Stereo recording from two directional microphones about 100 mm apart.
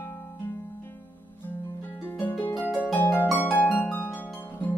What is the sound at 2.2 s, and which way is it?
Harp, 20° left (ahead or behind).